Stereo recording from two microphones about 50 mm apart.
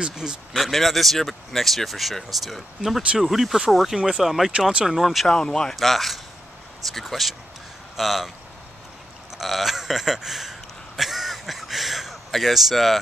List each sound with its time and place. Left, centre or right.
0.0 s speech: centre
0.6 s speech: centre
5.3 s speech: centre
5.8 s speech: centre
9.4 s a sound: centre